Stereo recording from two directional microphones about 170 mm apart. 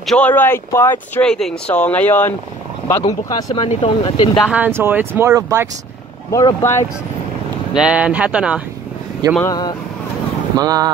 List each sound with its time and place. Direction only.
0.0 s speech: 5° left (ahead or behind)
3.3 s speech: 20° left (ahead or behind)
3.5 s speech: 30° left (ahead or behind)
4.4 s speech: 5° right (ahead or behind)
6.3 s speech: 15° left (ahead or behind)
7.7 s speech: 5° right (ahead or behind)
9.4 s speech: 25° left (ahead or behind)
10.6 s speech: 20° right (ahead or behind)